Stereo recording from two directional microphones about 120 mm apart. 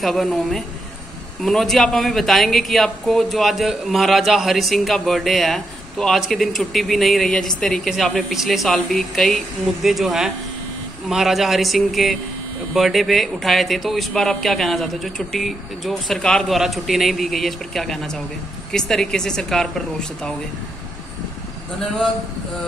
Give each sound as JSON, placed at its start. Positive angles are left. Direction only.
{"t": 0.0, "sound": "speech", "side_deg": 0}